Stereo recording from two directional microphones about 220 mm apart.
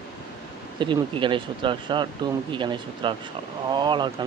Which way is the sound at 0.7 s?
20° right (ahead or behind).